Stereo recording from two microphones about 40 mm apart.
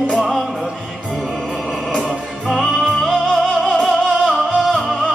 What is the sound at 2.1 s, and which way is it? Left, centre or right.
Music, centre.